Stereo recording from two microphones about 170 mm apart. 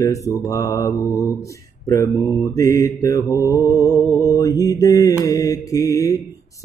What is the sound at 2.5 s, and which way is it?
Mantra, 20° left (ahead or behind).